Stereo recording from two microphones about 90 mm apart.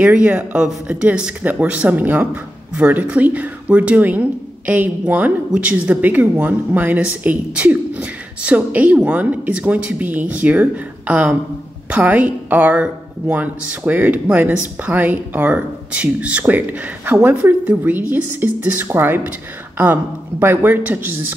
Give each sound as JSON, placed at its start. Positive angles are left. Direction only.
{"t": 0.0, "sound": "speech", "side_deg": -15}